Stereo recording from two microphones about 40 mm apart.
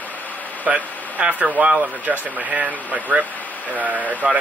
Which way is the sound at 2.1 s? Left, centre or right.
Right.